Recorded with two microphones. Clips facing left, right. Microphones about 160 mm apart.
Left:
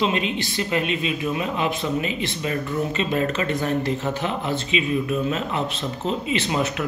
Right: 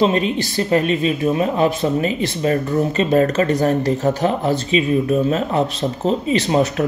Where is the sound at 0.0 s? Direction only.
40° right (ahead or behind).